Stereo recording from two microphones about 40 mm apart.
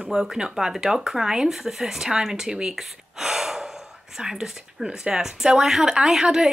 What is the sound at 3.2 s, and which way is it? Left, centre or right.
Gasp, centre.